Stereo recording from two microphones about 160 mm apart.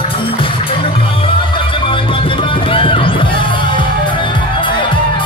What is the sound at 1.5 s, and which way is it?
Music, 35° left (ahead or behind).